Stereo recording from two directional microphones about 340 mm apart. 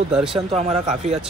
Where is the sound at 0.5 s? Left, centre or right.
Centre.